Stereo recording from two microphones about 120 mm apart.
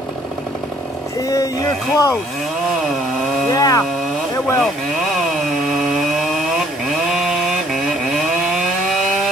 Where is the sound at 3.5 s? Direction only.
30° left (ahead or behind).